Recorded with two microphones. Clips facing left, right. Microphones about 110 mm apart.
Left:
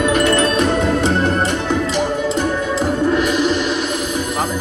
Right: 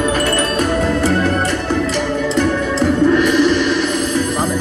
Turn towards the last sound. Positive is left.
turn(degrees=50)  # may be behind; listen again after turning